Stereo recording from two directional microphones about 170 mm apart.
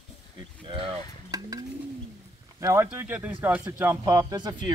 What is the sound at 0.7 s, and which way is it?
Speech, 30° right (ahead or behind).